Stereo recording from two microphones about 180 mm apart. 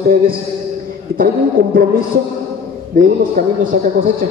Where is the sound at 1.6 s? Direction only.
50° right (ahead or behind).